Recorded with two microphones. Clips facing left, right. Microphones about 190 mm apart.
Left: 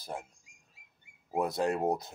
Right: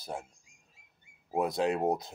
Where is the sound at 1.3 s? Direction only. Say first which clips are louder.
Right 1 dB; centre (ahead or behind).